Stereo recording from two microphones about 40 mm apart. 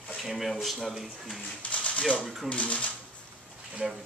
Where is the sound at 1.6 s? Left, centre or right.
Left.